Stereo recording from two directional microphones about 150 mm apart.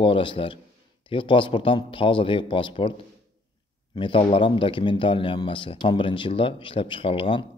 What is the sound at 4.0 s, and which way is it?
A man's voice, 35° left (ahead or behind).